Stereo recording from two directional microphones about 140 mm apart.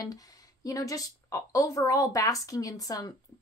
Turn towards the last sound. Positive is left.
turn(degrees=25)  # may be behind; listen again after turning